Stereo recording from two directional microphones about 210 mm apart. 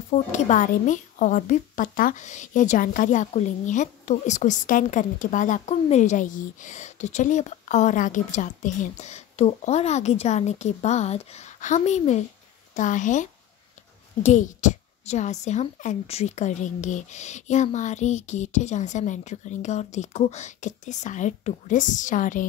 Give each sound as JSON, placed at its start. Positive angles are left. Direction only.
{"t": 0.1, "sound": "a woman's voice", "side_deg": 35}